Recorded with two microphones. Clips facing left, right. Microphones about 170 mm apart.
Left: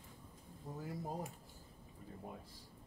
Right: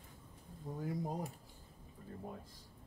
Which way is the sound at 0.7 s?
Centre (ahead or behind).